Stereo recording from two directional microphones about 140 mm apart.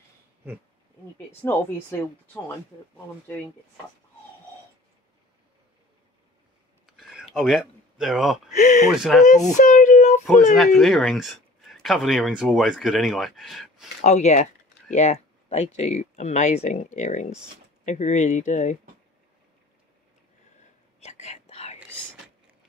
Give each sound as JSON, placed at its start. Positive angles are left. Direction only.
{"t": 1.1, "sound": "speech", "side_deg": 15}
{"t": 6.9, "sound": "a sound", "side_deg": -5}
{"t": 8.5, "sound": "speech", "side_deg": 55}
{"t": 8.9, "sound": "speech", "side_deg": 0}
{"t": 9.6, "sound": "speech", "side_deg": 65}
{"t": 10.5, "sound": "speech", "side_deg": 0}
{"t": 14.0, "sound": "speech", "side_deg": 55}
{"t": 21.0, "sound": "whispering", "side_deg": 55}